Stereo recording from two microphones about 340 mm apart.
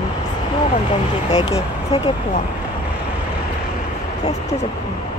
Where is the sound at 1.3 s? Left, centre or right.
Centre.